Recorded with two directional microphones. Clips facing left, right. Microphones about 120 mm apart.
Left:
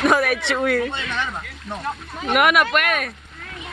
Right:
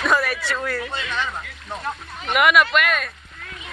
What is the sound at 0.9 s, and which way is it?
Speech, 10° right (ahead or behind).